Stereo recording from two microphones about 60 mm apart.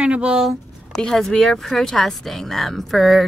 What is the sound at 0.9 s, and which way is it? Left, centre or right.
Speech, centre.